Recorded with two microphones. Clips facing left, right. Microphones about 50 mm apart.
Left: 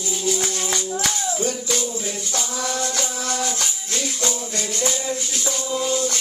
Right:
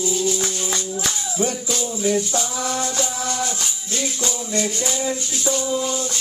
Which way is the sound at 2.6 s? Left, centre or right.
Right.